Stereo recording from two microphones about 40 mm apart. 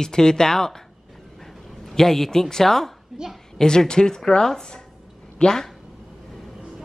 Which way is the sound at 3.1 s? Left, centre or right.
Centre.